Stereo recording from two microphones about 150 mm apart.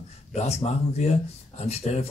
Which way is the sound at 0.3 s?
45° left (ahead or behind).